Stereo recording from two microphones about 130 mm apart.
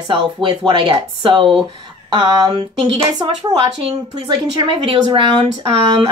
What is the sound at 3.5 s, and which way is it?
Speech, 30° right (ahead or behind).